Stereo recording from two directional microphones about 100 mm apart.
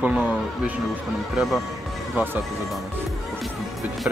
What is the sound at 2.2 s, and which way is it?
Speech, 20° right (ahead or behind).